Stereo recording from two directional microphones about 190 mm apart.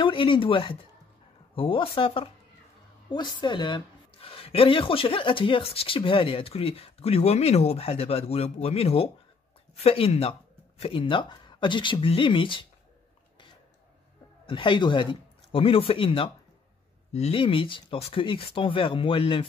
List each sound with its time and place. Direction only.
0.0 s a woman's voice: 25° left (ahead or behind)
14.4 s a woman's voice: 25° left (ahead or behind)